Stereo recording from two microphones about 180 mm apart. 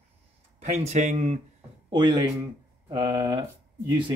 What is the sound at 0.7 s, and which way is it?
Speech, 40° right (ahead or behind).